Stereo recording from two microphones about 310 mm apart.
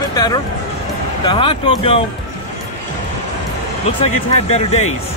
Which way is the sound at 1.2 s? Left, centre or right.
Centre.